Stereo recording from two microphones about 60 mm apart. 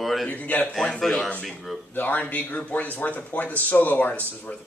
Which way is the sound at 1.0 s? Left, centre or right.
Centre.